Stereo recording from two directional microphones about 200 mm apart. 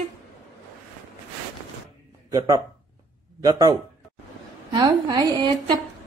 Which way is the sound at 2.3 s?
15° right (ahead or behind).